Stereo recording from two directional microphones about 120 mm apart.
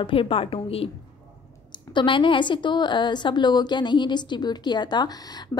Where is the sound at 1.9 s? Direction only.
45° left (ahead or behind).